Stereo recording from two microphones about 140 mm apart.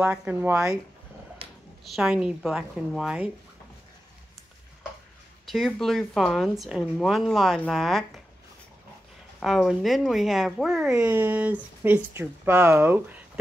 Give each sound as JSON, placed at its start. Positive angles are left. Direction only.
{"t": 0.0, "sound": "speech", "side_deg": -5}
{"t": 1.4, "sound": "a sound", "side_deg": -45}
{"t": 2.0, "sound": "speech", "side_deg": -5}
{"t": 5.5, "sound": "speech", "side_deg": 0}
{"t": 9.4, "sound": "speech", "side_deg": 0}
{"t": 10.9, "sound": "speech", "side_deg": -15}